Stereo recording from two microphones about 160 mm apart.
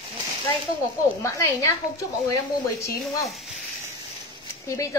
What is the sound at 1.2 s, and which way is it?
Speech, 20° left (ahead or behind).